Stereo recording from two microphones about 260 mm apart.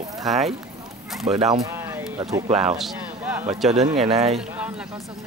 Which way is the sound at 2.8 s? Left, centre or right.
Centre.